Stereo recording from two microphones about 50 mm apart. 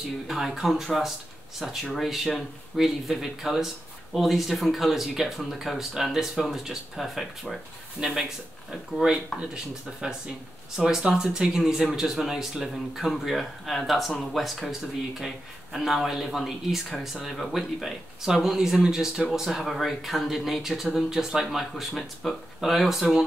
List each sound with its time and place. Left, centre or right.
0.0 s speech: centre
8.0 s speech: centre